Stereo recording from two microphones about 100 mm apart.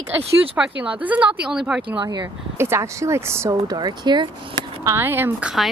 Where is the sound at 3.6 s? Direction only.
45° right (ahead or behind).